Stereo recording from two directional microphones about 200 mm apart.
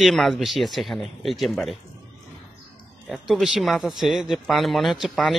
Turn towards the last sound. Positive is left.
turn(degrees=0)  # may be behind; listen again after turning